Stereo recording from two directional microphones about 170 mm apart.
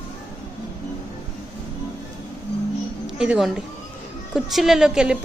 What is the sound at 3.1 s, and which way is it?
A woman's voice, 5° right (ahead or behind).